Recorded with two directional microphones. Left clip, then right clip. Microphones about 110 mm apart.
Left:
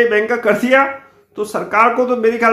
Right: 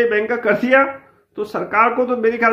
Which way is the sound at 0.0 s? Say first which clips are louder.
Left 3 dB; 20° left (ahead or behind).